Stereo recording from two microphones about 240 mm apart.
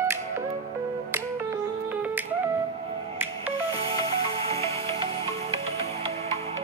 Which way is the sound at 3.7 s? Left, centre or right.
Right.